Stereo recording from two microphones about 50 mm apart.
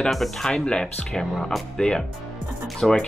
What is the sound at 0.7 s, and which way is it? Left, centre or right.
A woman's voice, centre.